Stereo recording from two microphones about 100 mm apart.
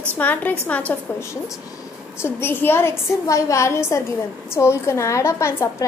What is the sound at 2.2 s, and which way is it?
A woman's voice, 20° left (ahead or behind).